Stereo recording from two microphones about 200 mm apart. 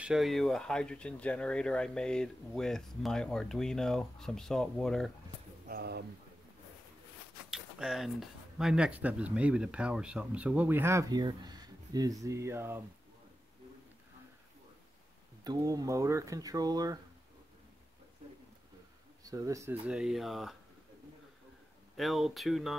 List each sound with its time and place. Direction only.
0.0 s speech: centre (ahead or behind)
5.7 s speech: 50° right (ahead or behind)
7.5 s speech: centre (ahead or behind)
15.4 s speech: 20° right (ahead or behind)
19.2 s speech: 15° right (ahead or behind); by 20.5 s centre (ahead or behind)
21.9 s speech: centre (ahead or behind)